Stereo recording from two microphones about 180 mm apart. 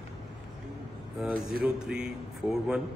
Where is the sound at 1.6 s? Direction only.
5° right (ahead or behind).